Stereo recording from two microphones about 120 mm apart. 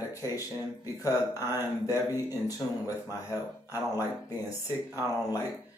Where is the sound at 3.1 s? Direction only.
30° left (ahead or behind).